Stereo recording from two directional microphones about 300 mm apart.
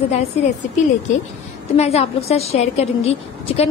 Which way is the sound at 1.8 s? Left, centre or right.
Left.